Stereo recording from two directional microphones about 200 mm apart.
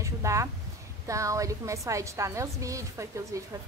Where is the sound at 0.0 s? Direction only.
15° right (ahead or behind).